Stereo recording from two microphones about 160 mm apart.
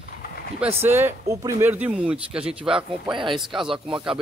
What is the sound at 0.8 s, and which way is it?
Speech, 15° right (ahead or behind).